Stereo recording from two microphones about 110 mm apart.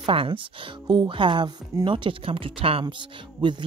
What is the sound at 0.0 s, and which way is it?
A woman's voice, 55° right (ahead or behind).